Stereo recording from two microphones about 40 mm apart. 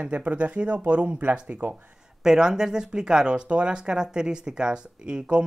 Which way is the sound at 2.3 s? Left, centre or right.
Centre.